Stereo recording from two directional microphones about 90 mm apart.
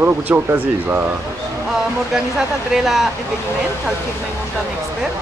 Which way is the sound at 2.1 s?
5° right (ahead or behind).